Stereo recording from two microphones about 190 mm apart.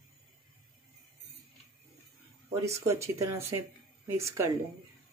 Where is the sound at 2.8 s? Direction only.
15° right (ahead or behind).